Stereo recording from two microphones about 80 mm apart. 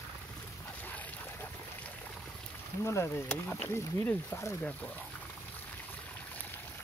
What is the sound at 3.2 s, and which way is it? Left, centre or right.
Speech, centre.